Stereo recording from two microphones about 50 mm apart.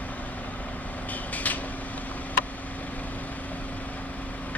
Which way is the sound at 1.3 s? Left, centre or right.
Left.